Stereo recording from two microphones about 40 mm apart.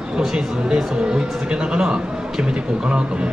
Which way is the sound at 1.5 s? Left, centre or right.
Centre.